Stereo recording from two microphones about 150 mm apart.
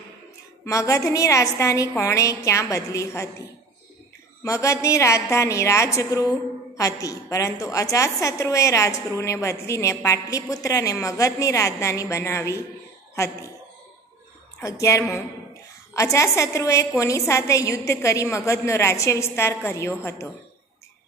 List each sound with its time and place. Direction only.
0.7 s a woman's voice: 20° left (ahead or behind)
4.4 s a woman's voice: 20° left (ahead or behind)
14.6 s a woman's voice: 20° left (ahead or behind)